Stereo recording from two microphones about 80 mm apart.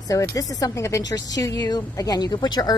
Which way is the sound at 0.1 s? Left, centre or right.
Left.